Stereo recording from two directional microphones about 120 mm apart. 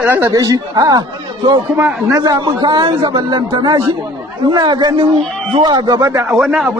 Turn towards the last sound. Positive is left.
turn(degrees=-35)  # may be behind; listen again after turning